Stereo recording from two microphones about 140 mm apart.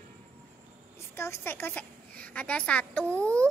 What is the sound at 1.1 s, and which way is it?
A child's voice, 20° left (ahead or behind).